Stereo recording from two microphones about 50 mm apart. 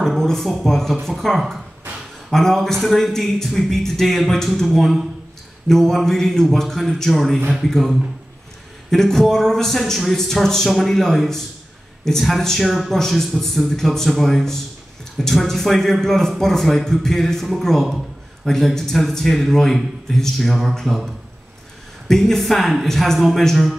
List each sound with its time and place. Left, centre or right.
0.0 s a man's voice: centre
0.9 s a man's voice: centre
2.3 s speech: centre
5.7 s a man's voice: centre
7.3 s speech: centre
7.6 s a man's voice: centre